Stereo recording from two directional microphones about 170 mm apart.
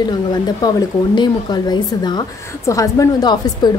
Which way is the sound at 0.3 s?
25° left (ahead or behind).